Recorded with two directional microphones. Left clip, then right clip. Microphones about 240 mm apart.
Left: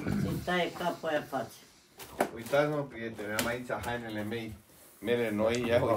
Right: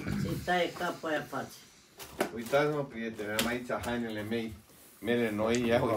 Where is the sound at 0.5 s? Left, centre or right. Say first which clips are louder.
Even; left.